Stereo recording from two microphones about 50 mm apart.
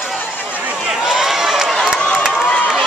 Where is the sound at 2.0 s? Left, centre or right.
Left.